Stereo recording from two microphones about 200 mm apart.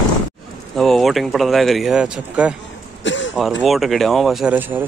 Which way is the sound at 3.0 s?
70° left (ahead or behind).